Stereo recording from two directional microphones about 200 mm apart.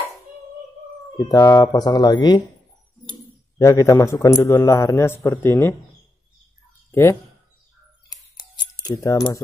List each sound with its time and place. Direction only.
1.1 s speech: 15° left (ahead or behind)
3.5 s a man's voice: 15° left (ahead or behind)
6.9 s speech: 15° left (ahead or behind)
8.1 s a sound: 20° left (ahead or behind)